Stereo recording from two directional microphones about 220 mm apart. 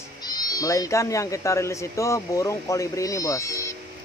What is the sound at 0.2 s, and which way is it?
Speech, 15° left (ahead or behind).